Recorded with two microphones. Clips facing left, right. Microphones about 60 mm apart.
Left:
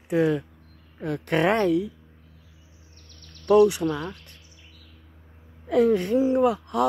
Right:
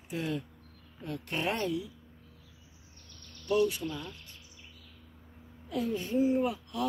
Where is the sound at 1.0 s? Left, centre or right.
Left.